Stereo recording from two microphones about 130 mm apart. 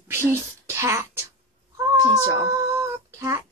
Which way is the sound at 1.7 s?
25° right (ahead or behind).